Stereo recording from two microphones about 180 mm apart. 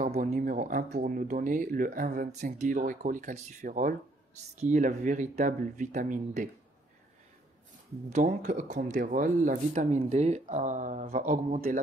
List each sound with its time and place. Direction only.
0.0 s speech: 45° right (ahead or behind)
8.1 s speech: 45° right (ahead or behind)